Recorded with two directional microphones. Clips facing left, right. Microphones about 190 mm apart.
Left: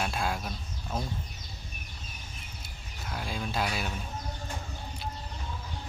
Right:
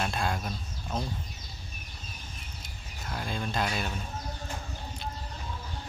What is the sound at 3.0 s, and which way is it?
Speech, centre (ahead or behind).